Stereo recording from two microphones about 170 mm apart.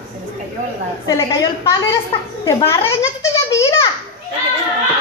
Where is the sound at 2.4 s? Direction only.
15° left (ahead or behind).